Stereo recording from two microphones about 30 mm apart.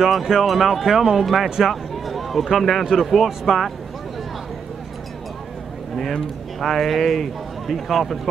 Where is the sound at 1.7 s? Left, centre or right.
Centre.